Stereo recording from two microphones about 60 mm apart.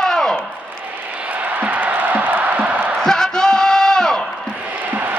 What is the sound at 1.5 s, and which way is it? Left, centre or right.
Music, right.